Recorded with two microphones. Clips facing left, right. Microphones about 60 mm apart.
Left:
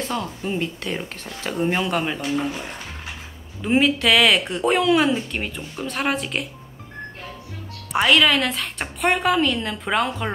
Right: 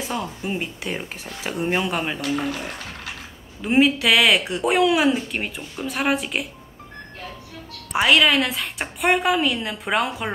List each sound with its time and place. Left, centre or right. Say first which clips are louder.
0.0 s speech: left 1 dB; centre
2.2 s speech: even; right
3.6 s a woman's voice: right 1 dB; centre
7.9 s a woman's voice: even; centre